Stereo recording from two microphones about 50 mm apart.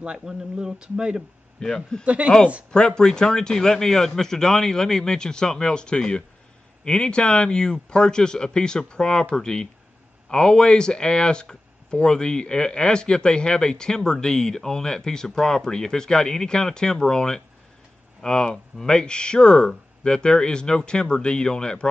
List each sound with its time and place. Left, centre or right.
0.0 s speech: centre
1.6 s speech: centre
2.0 s speech: right
3.0 s speech: centre